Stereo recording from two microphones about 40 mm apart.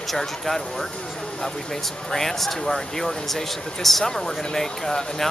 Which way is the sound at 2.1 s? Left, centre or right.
Centre.